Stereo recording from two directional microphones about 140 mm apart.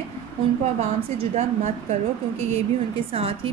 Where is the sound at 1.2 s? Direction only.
55° right (ahead or behind).